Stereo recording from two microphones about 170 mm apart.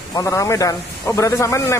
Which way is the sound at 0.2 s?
15° left (ahead or behind).